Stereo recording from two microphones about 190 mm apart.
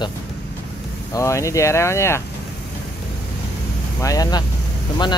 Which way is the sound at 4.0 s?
20° left (ahead or behind).